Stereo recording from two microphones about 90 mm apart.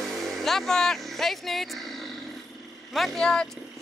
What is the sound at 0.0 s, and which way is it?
Vehicle, centre (ahead or behind).